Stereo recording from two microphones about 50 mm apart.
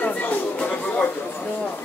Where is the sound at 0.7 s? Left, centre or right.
Centre.